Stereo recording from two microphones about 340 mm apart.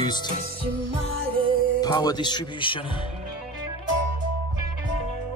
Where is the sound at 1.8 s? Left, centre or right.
Centre.